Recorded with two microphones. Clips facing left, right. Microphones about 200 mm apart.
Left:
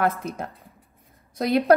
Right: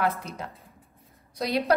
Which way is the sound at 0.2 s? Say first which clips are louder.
Left 6 dB; 50° left (ahead or behind).